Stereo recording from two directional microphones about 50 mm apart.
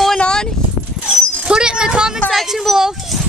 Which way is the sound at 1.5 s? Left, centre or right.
Centre.